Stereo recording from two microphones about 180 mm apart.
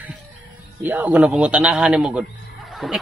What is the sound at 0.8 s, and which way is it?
A man's voice, 10° right (ahead or behind).